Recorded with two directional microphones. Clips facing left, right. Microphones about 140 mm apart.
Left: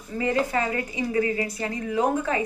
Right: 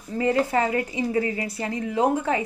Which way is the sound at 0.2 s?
30° right (ahead or behind).